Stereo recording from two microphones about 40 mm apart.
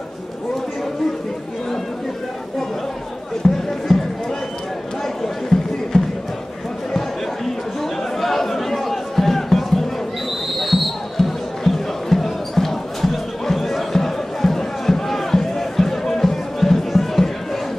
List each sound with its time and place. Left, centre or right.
3.4 s music: centre
3.9 s a sound: centre
5.5 s music: centre
5.9 s crowd: centre
8.2 s chatter: centre
10.5 s music: centre